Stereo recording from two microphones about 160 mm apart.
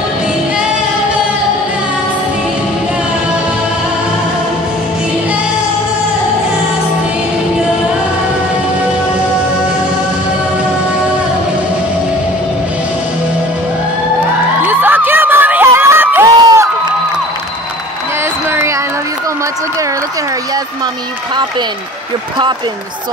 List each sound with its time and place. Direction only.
14.6 s crowd: 10° right (ahead or behind)
16.3 s crowd: 25° right (ahead or behind)